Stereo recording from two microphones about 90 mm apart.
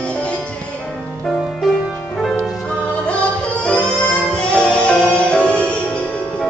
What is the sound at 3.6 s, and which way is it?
Music, 10° left (ahead or behind).